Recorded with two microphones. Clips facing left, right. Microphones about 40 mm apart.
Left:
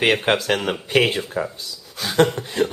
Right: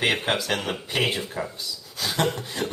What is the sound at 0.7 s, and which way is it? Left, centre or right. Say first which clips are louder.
Speech: left 7 dB; left.